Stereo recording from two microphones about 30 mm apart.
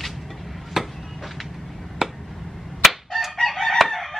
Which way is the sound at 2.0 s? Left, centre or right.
Centre.